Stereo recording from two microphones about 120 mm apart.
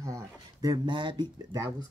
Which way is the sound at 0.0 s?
30° right (ahead or behind).